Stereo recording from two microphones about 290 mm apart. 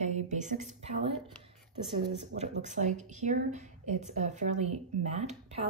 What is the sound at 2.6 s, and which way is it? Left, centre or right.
A woman's voice, right.